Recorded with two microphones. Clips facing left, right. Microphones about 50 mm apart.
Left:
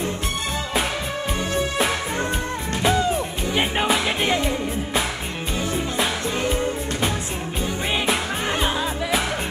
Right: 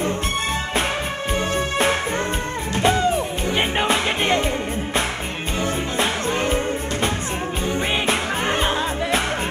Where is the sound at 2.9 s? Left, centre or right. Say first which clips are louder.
Even; right.